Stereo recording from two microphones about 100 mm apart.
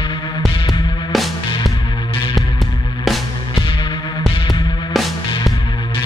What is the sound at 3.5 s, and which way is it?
Music, 55° left (ahead or behind).